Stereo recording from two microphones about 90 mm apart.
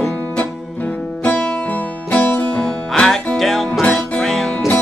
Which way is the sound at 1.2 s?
15° left (ahead or behind).